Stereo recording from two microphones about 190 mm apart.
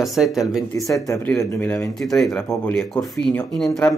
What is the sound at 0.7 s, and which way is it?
Speech, 15° left (ahead or behind).